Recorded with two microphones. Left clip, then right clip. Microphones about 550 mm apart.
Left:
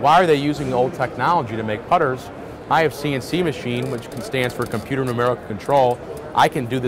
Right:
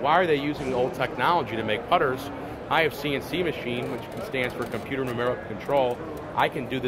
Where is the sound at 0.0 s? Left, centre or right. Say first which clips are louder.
Left 7 dB; left.